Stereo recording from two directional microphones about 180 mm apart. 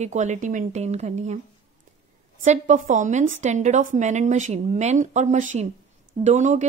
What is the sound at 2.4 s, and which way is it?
A woman's voice, 40° right (ahead or behind).